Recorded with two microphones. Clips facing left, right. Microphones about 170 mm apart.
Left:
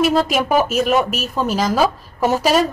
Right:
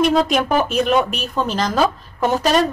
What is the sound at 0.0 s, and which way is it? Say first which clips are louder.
Speech: even; 5° left (ahead or behind).